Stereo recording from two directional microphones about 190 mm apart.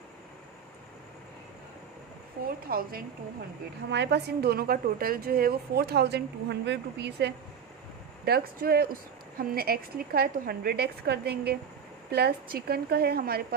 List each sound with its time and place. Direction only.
2.4 s a woman's voice: 50° right (ahead or behind)
3.9 s a woman's voice: 65° right (ahead or behind)